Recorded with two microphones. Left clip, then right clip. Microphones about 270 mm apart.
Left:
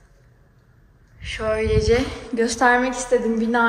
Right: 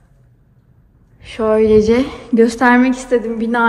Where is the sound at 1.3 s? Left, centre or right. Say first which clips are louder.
Right 10 dB; centre.